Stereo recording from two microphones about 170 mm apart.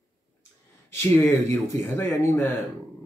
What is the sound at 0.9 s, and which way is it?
Speech, 15° left (ahead or behind).